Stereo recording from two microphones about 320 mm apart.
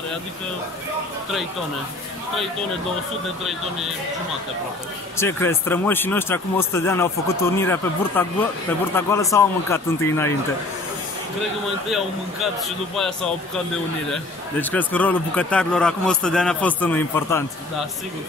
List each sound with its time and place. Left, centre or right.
5.1 s speech: centre
12.6 s a man's voice: centre